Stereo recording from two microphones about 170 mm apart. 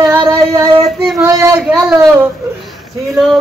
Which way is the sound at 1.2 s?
15° right (ahead or behind).